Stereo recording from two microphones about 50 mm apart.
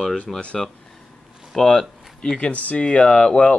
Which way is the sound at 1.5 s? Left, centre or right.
Centre.